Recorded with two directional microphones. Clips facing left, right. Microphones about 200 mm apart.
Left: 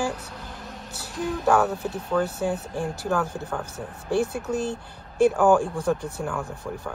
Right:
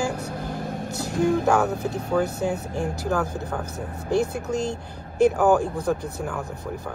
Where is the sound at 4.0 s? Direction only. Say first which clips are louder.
Right 1 dB; 40° right (ahead or behind).